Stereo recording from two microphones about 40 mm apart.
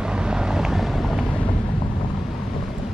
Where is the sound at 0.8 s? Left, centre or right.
Centre.